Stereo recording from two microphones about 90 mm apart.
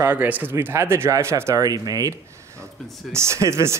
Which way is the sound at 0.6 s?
30° right (ahead or behind).